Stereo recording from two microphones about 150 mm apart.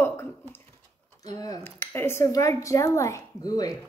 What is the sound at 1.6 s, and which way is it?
Speech, 15° left (ahead or behind).